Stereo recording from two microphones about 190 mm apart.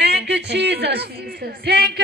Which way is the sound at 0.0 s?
60° right (ahead or behind).